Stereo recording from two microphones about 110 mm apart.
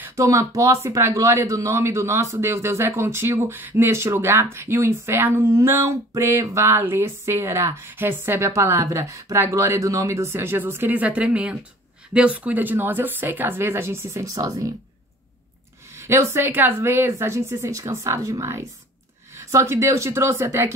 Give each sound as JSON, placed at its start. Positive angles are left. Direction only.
{"t": 0.1, "sound": "speech", "side_deg": -30}
{"t": 15.9, "sound": "speech", "side_deg": -25}